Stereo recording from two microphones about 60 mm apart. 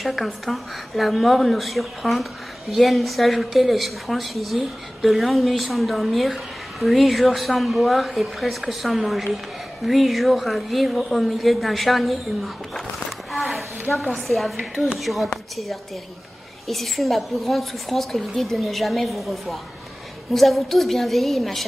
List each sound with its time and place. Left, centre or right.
0.0 s a woman's voice: centre
13.3 s a sound: centre
13.9 s a woman's voice: left
14.2 s a woman's voice: centre
16.6 s a woman's voice: centre